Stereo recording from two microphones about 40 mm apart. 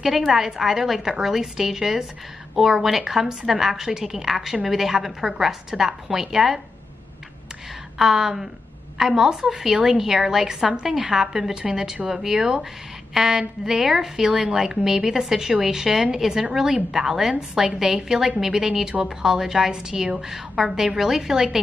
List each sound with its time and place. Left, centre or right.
0.0 s a woman's voice: centre
8.0 s a woman's voice: centre
17.4 s a woman's voice: right